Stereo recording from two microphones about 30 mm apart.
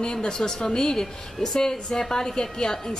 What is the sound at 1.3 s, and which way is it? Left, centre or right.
A woman's voice, centre.